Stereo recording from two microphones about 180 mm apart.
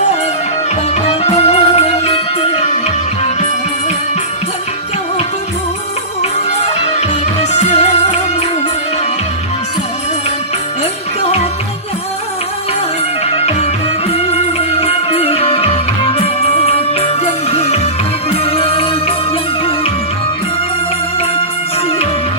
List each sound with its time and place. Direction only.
1.0 s music: 35° left (ahead or behind)
6.6 s music: 40° left (ahead or behind)
13.3 s music: 35° left (ahead or behind)